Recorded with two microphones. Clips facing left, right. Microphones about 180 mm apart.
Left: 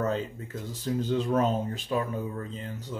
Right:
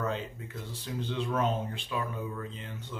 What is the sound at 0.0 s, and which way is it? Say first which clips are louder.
Speech: left 5 dB; 40° left (ahead or behind).